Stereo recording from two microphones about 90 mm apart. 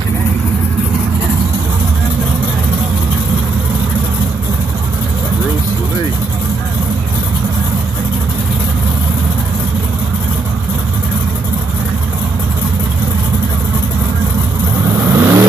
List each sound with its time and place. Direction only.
15.0 s vehicle: 25° right (ahead or behind)